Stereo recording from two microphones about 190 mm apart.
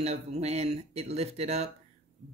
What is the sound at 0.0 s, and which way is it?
Speech, 35° right (ahead or behind).